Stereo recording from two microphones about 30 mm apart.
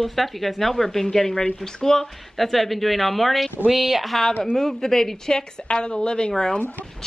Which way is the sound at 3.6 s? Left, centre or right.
Centre.